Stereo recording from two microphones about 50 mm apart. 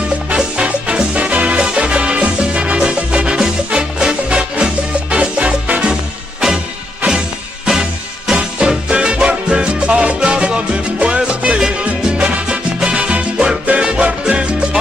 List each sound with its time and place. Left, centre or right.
0.6 s music: right
7.1 s music: centre
13.7 s salsa music: right